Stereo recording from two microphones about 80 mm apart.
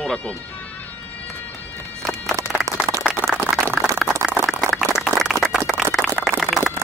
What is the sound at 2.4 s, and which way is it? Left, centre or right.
Run, right.